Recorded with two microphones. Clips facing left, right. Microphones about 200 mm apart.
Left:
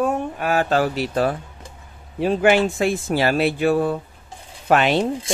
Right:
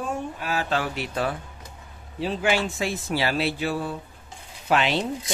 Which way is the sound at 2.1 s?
55° left (ahead or behind).